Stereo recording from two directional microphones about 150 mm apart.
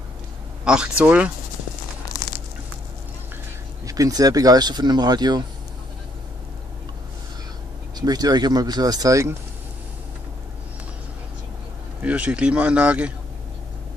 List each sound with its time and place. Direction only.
0.7 s speech: 5° right (ahead or behind)
3.8 s speech: 25° right (ahead or behind)
8.0 s speech: 25° right (ahead or behind)
12.0 s speech: 10° right (ahead or behind)